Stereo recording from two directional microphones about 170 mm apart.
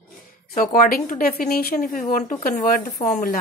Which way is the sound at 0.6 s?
55° left (ahead or behind).